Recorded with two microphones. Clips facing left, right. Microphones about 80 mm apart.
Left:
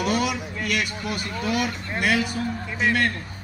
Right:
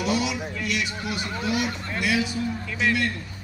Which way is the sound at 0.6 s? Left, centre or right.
Left.